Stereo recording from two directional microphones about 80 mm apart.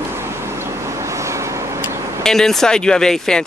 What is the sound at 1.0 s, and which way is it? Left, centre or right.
Vehicle, right.